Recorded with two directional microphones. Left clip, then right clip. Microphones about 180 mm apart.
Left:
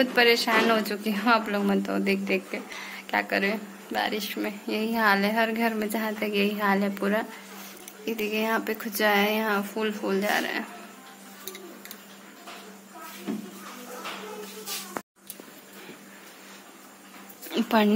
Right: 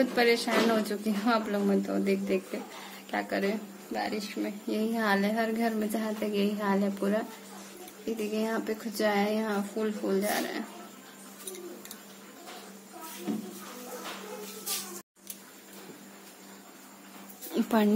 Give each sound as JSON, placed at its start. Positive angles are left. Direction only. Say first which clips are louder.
{"t": 0.0, "sound": "speech", "louder": "left 4 dB", "side_deg": -10}
{"t": 2.2, "sound": "speech", "louder": "left 3 dB", "side_deg": -15}
{"t": 17.5, "sound": "a sound", "louder": "left 4 dB", "side_deg": -15}